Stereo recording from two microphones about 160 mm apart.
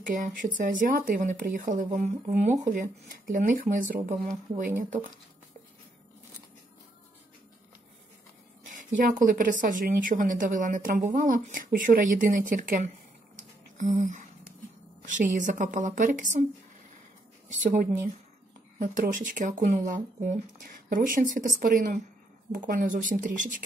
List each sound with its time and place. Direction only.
0.0 s speech: 55° right (ahead or behind)
8.6 s speech: 55° right (ahead or behind)
13.7 s a sound: 50° right (ahead or behind)
15.0 s a woman's voice: 50° right (ahead or behind)
17.5 s a woman's voice: 50° right (ahead or behind)